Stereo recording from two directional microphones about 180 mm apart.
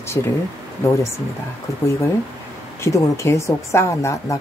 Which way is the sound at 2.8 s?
15° left (ahead or behind).